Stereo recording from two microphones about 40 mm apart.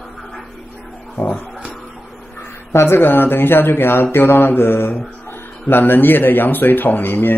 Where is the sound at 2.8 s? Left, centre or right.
Left.